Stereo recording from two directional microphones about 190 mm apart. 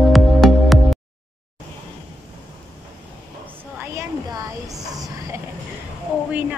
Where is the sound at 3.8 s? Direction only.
20° right (ahead or behind).